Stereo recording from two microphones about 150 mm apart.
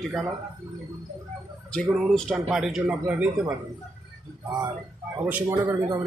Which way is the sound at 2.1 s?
Centre (ahead or behind).